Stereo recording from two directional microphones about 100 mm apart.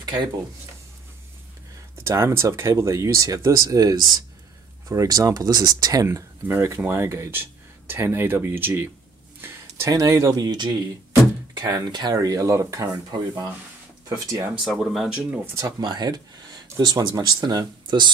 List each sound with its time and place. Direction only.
0.0 s a sound: 45° right (ahead or behind)
2.0 s speech: 25° right (ahead or behind)
6.0 s speech: 25° right (ahead or behind)
9.8 s speech: 35° right (ahead or behind)
14.0 s speech: 40° right (ahead or behind)
14.5 s speech: 5° right (ahead or behind)
15.3 s speech: 25° right (ahead or behind)
15.8 s speech: 45° right (ahead or behind)